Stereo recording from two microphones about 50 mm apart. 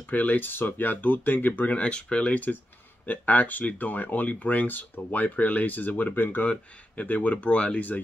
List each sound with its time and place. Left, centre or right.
0.0 s speech: left
1.8 s speech: left